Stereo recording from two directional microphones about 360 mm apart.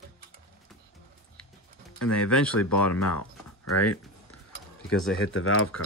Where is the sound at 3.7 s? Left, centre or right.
Left.